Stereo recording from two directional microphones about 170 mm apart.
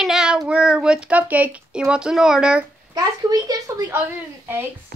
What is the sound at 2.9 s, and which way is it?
A woman's voice, 20° right (ahead or behind).